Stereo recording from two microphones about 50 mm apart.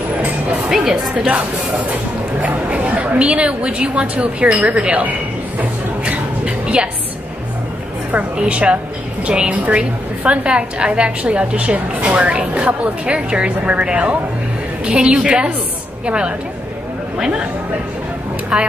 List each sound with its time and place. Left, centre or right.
0.7 s a woman's voice: centre
2.4 s a woman's voice: right
5.6 s a sound: right
8.4 s a woman's voice: right
18.5 s a woman's voice: centre